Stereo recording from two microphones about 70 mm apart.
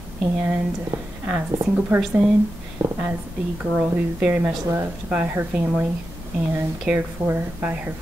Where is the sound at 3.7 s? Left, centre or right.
Right.